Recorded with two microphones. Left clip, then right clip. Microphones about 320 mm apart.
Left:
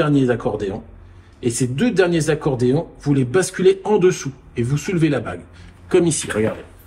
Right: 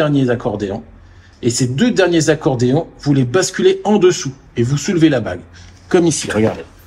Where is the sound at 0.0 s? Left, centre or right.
Centre.